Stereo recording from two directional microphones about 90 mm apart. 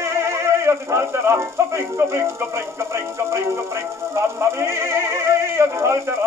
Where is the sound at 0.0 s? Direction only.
30° right (ahead or behind).